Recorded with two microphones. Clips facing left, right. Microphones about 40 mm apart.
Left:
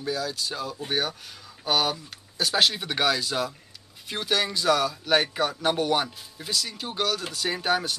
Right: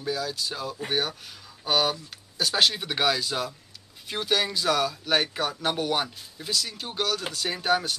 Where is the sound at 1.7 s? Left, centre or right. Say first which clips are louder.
Even; centre.